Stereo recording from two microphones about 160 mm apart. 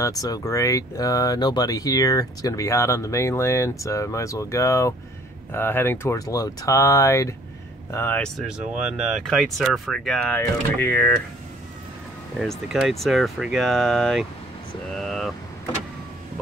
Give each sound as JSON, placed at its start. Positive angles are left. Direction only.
{"t": 0.0, "sound": "speech", "side_deg": 20}
{"t": 8.4, "sound": "speech", "side_deg": -5}
{"t": 12.4, "sound": "speech", "side_deg": 0}